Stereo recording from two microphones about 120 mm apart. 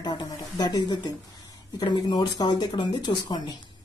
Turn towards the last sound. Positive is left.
turn(degrees=35)  # may be behind; listen again after turning